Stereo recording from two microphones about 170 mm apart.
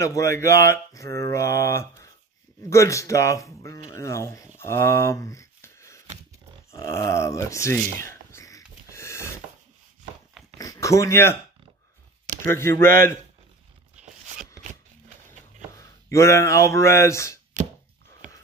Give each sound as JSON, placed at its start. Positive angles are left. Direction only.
{"t": 0.0, "sound": "speech", "side_deg": 20}
{"t": 4.6, "sound": "a sound", "side_deg": 15}
{"t": 10.6, "sound": "speech", "side_deg": 20}
{"t": 12.4, "sound": "speech", "side_deg": 15}
{"t": 14.6, "sound": "a sound", "side_deg": -45}
{"t": 15.8, "sound": "speech", "side_deg": 15}